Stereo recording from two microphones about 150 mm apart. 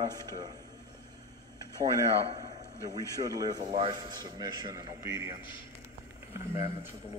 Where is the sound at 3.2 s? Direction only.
25° right (ahead or behind).